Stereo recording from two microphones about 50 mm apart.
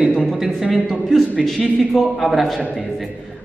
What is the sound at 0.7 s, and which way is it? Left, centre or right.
A man's voice, centre.